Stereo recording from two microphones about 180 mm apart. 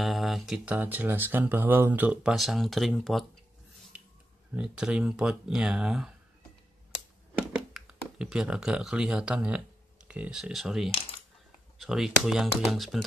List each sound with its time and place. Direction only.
0.0 s speech: centre (ahead or behind)
4.6 s speech: 5° right (ahead or behind)
7.3 s speech: 5° right (ahead or behind)